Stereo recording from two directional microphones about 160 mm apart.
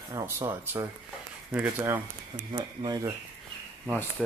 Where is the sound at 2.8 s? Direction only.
25° right (ahead or behind).